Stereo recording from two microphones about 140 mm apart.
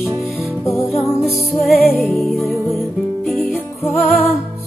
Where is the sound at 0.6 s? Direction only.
15° left (ahead or behind).